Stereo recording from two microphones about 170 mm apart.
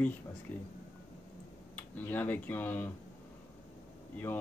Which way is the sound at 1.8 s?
10° left (ahead or behind).